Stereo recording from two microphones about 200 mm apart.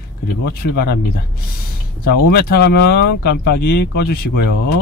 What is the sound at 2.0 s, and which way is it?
Speech, 50° left (ahead or behind).